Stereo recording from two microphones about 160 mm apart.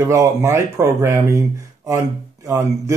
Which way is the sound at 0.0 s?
20° right (ahead or behind).